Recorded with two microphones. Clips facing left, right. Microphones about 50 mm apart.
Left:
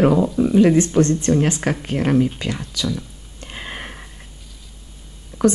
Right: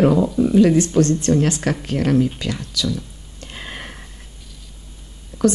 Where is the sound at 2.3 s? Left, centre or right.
Centre.